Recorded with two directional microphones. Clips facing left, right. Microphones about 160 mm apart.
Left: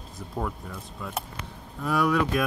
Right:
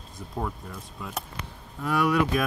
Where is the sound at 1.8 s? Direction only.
5° right (ahead or behind).